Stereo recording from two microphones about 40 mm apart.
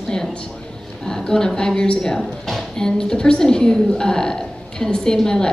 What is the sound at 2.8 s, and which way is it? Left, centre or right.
A woman's voice, centre.